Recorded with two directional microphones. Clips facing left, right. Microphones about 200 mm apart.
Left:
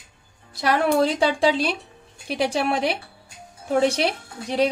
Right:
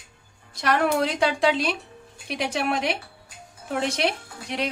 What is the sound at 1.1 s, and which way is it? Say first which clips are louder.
A woman's voice: left 2 dB; 30° left (ahead or behind).